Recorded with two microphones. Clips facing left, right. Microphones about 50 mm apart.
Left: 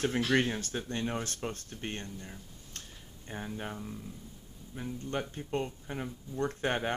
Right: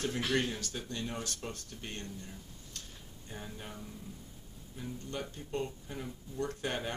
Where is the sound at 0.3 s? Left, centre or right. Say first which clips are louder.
Left 4 dB; left.